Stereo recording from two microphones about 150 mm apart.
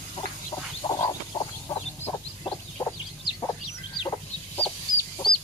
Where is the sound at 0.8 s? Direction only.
30° left (ahead or behind).